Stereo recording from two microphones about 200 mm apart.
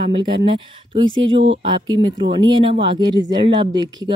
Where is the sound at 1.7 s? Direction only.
20° right (ahead or behind).